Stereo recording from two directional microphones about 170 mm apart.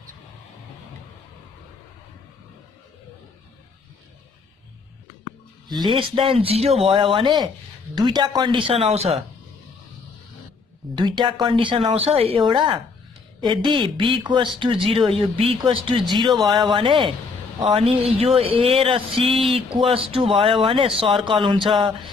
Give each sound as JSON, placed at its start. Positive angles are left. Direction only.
{"t": 5.7, "sound": "speech", "side_deg": -25}
{"t": 11.0, "sound": "a woman's voice", "side_deg": -25}